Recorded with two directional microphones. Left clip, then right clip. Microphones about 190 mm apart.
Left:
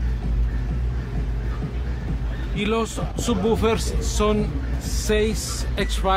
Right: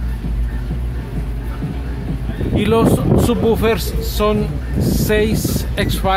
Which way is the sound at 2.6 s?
20° right (ahead or behind).